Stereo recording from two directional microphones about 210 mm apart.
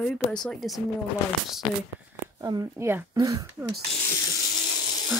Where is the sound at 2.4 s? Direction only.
15° right (ahead or behind).